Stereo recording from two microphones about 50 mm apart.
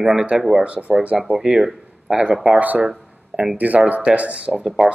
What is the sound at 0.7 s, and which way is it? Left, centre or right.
Speech, right.